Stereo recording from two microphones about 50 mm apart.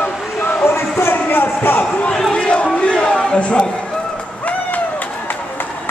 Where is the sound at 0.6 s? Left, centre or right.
Left.